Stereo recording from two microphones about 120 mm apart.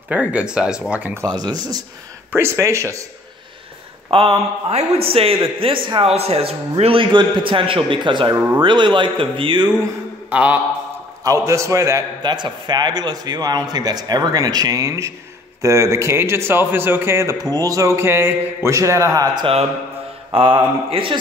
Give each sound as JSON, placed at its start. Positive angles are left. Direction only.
{"t": 0.1, "sound": "speech", "side_deg": -10}
{"t": 1.2, "sound": "a man's voice", "side_deg": -35}
{"t": 2.3, "sound": "a man's voice", "side_deg": -20}
{"t": 4.1, "sound": "a man's voice", "side_deg": -50}
{"t": 10.3, "sound": "speech", "side_deg": -10}
{"t": 11.2, "sound": "a man's voice", "side_deg": -25}
{"t": 12.2, "sound": "a man's voice", "side_deg": -40}
{"t": 19.3, "sound": "a man's voice", "side_deg": -50}